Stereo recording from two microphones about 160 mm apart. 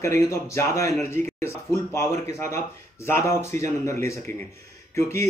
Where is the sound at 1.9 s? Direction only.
15° left (ahead or behind).